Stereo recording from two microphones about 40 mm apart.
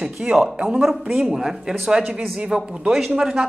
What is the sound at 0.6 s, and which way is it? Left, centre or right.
Speech, centre.